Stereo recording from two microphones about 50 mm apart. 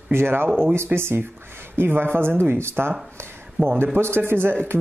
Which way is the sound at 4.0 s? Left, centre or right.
Right.